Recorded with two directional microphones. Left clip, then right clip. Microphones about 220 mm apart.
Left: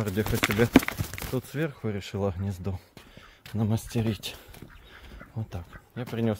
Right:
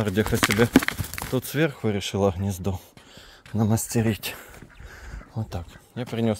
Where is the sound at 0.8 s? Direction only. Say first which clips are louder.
Right 5 dB; 10° right (ahead or behind).